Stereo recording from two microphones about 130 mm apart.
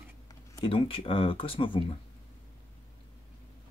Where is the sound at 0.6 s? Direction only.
45° left (ahead or behind).